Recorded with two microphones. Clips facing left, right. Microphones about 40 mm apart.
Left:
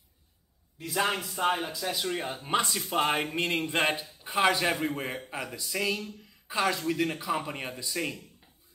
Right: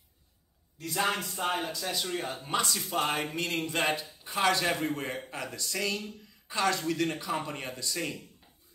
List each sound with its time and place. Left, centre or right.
0.7 s speech: centre
2.9 s a sound: left
4.2 s a man's voice: centre